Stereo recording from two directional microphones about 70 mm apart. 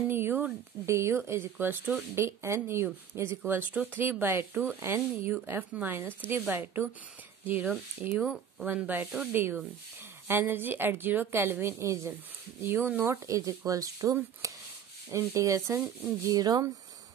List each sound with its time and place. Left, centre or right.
0.1 s a sound: right
0.8 s speech: right
5.3 s speech: right
8.1 s speech: centre
8.5 s speech: centre
11.6 s speech: right
12.6 s speech: right
13.3 s speech: right
16.3 s speech: right